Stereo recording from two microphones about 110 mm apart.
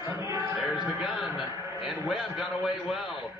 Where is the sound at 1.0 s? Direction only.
5° right (ahead or behind).